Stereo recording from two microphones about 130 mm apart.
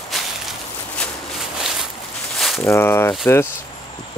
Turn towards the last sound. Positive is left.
turn(degrees=20)  # may be behind; listen again after turning